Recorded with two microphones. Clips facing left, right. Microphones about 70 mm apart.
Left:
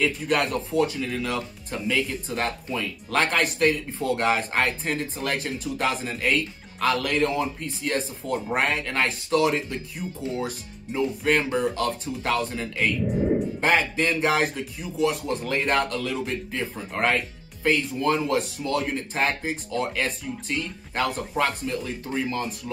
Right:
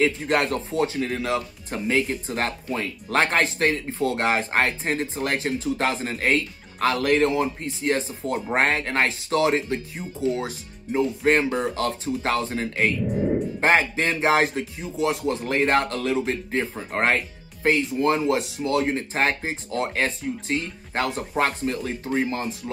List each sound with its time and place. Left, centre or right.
0.3 s speech: right